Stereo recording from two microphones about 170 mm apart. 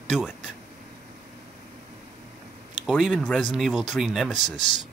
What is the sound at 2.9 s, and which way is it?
Speech, 5° right (ahead or behind).